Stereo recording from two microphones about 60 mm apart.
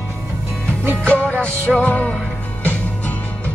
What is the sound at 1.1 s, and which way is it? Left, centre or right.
Music, left.